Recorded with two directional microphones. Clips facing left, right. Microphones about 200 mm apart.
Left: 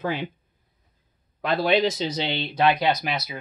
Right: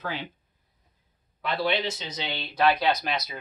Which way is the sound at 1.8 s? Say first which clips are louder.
Left 9 dB; 40° left (ahead or behind).